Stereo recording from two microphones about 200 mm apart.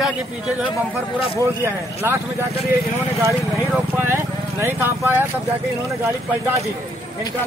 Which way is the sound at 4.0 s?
10° right (ahead or behind).